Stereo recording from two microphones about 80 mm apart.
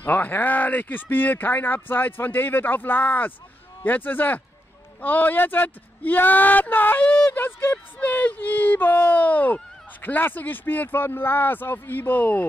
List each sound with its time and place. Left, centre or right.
0.0 s speech: left